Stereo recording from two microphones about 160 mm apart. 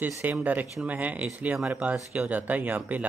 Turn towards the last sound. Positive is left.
turn(degrees=-10)  # may be behind; listen again after turning